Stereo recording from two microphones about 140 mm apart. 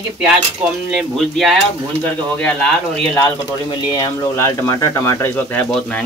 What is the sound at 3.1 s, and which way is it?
Speech, 20° left (ahead or behind).